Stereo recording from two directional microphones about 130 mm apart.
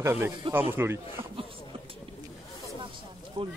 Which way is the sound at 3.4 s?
50° right (ahead or behind).